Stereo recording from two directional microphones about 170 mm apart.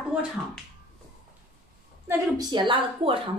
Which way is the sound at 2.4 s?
25° right (ahead or behind).